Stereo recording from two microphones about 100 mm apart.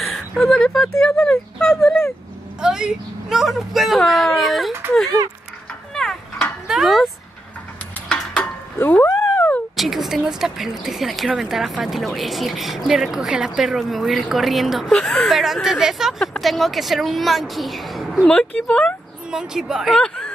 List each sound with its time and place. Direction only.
0.1 s a woman's voice: 5° left (ahead or behind)
2.6 s a woman's voice: 5° right (ahead or behind)
5.9 s a sound: 5° left (ahead or behind)
6.7 s speech: centre (ahead or behind)
8.7 s a sound: 20° left (ahead or behind)
9.8 s a woman's voice: centre (ahead or behind)
19.3 s a woman's voice: 5° right (ahead or behind)